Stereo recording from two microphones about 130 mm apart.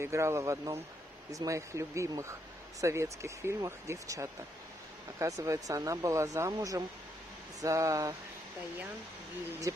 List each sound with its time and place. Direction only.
0.0 s speech: 20° right (ahead or behind)